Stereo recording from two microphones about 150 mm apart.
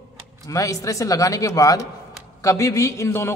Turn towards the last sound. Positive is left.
turn(degrees=15)  # may be behind; listen again after turning